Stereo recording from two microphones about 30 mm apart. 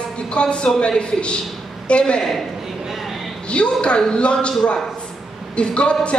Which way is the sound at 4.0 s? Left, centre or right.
Left.